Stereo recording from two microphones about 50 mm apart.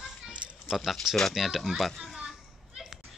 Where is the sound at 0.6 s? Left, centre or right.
Centre.